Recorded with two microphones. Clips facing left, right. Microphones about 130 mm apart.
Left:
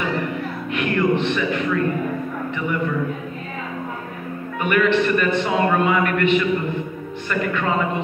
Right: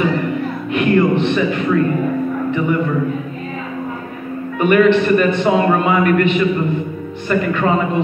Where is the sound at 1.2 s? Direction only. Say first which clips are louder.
Right 5 dB; 35° right (ahead or behind).